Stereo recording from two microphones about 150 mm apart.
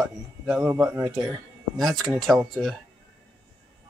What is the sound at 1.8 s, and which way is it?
Speech, centre (ahead or behind).